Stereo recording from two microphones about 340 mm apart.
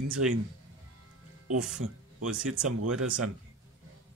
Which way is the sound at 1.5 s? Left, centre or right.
Right.